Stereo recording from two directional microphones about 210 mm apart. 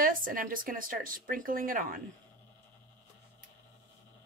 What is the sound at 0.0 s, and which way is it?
Speech, 40° right (ahead or behind).